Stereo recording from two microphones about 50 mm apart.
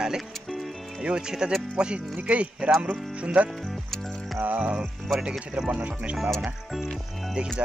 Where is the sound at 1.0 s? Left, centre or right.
Centre.